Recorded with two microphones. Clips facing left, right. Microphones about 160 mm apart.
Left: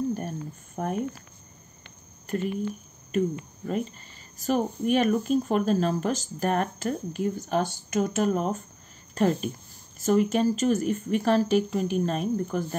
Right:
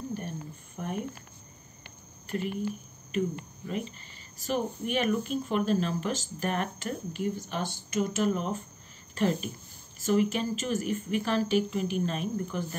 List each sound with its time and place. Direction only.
0.8 s speech: 55° left (ahead or behind)
2.2 s speech: 45° left (ahead or behind)
3.1 s cricket: 45° left (ahead or behind)
4.5 s a woman's voice: 40° left (ahead or behind)